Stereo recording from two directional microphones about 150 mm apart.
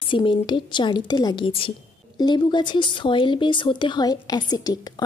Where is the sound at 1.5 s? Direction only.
40° left (ahead or behind).